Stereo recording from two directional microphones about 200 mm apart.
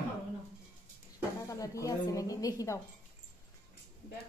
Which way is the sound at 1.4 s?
15° left (ahead or behind).